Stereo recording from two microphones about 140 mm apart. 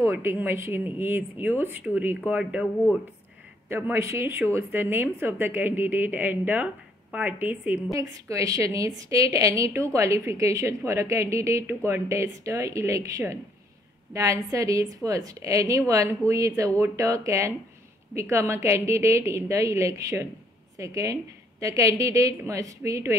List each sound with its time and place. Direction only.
0.0 s a woman's voice: 20° right (ahead or behind)
7.9 s a woman's voice: 25° right (ahead or behind)